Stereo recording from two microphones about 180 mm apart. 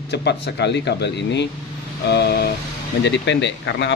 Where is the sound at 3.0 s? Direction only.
80° left.